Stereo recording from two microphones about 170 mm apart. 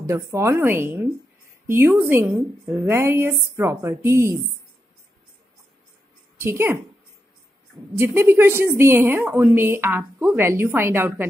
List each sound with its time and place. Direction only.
0.0 s a woman's voice: 15° right (ahead or behind)
6.4 s a woman's voice: 15° right (ahead or behind)
8.0 s a woman's voice: 15° right (ahead or behind)